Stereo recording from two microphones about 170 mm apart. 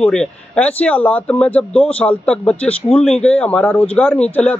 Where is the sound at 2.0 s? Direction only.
5° left (ahead or behind).